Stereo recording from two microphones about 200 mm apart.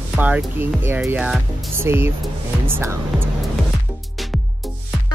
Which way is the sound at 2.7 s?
10° right (ahead or behind).